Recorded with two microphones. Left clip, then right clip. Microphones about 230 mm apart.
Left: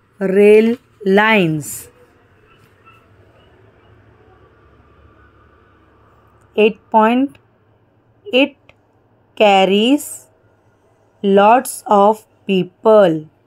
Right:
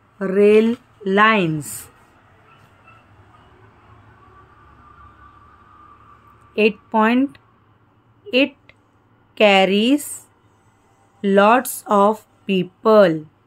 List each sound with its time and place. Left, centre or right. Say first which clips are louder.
0.2 s speech: left 4 dB; centre
6.5 s a woman's voice: left 5 dB; centre
8.3 s a sound: left 3 dB; centre
9.3 s speech: left 3 dB; centre
11.1 s speech: left 3 dB; centre